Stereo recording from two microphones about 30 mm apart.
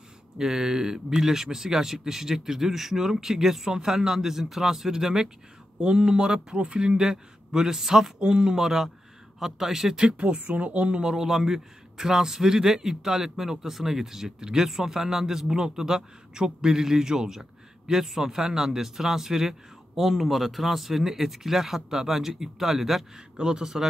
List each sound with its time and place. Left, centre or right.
0.4 s a man's voice: centre
7.0 s a man's voice: centre
8.2 s a man's voice: right
8.6 s a man's voice: centre
10.1 s speech: right
10.7 s speech: right
11.0 s a man's voice: centre
23.4 s a man's voice: right